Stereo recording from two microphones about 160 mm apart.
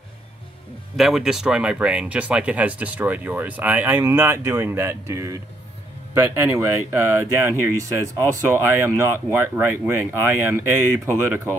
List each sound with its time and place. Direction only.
0.9 s speech: 5° right (ahead or behind)